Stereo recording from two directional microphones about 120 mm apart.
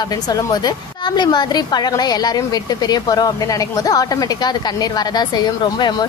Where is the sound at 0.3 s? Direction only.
30° left (ahead or behind).